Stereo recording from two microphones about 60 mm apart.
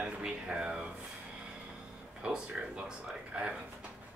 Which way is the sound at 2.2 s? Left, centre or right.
Centre.